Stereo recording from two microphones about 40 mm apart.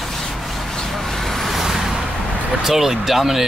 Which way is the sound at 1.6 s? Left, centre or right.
Centre.